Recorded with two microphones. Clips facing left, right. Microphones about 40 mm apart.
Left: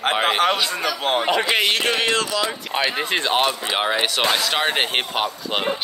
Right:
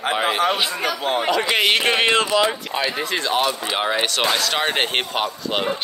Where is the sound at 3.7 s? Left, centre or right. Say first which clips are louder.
Even; centre.